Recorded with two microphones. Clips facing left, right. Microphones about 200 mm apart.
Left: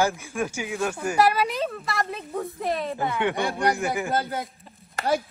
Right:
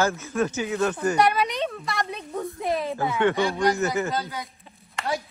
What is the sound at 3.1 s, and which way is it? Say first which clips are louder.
Speech: right 5 dB; 15° left (ahead or behind).